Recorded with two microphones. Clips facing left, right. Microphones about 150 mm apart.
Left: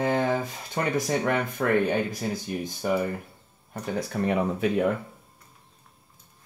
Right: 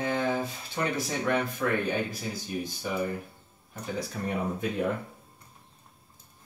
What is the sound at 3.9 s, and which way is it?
Speech, 75° left (ahead or behind).